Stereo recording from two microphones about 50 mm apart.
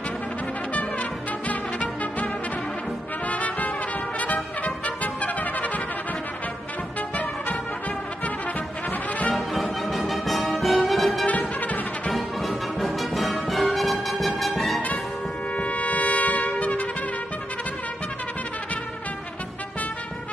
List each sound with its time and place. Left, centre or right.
1.5 s music: left
3.3 s music: left
4.8 s trumpet: left
9.3 s music: centre
11.2 s music: left
12.1 s music: centre
15.5 s trumpet: left